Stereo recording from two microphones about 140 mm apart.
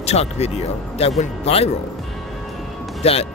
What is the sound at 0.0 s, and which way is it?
Speech, 50° left (ahead or behind).